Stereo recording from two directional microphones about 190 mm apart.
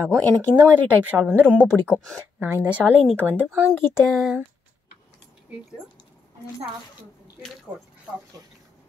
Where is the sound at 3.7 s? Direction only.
Centre (ahead or behind).